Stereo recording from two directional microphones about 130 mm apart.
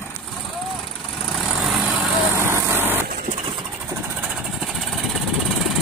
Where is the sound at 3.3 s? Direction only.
40° right (ahead or behind).